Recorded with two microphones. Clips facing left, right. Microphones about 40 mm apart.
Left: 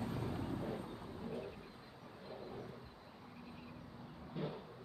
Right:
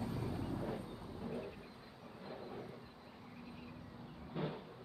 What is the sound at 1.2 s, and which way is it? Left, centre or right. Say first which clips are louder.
Vehicle: right 1 dB; centre.